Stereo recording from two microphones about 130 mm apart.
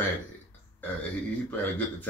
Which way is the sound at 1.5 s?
15° left (ahead or behind).